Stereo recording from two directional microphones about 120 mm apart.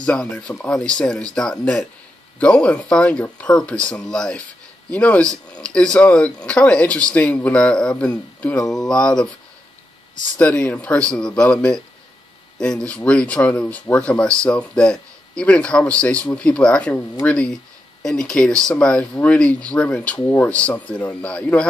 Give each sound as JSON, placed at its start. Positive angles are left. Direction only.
{"t": 0.0, "sound": "speech", "side_deg": 10}
{"t": 10.3, "sound": "speech", "side_deg": 10}